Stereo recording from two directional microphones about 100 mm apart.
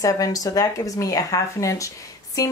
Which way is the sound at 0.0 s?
35° left (ahead or behind).